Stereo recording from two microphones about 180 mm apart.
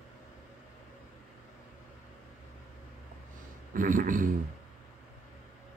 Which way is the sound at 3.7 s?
50° right (ahead or behind).